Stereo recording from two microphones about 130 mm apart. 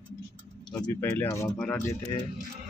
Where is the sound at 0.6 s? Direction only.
35° left (ahead or behind).